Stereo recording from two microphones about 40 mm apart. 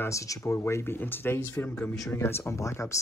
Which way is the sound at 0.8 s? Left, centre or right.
Left.